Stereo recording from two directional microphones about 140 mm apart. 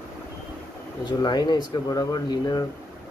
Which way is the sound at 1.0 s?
30° left (ahead or behind).